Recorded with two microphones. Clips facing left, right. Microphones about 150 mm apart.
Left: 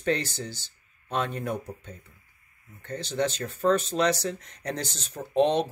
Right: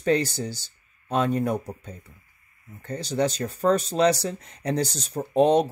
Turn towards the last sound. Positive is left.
turn(degrees=-40)  # may be behind; listen again after turning